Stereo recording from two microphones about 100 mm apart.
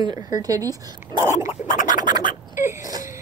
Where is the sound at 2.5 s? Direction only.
25° right (ahead or behind).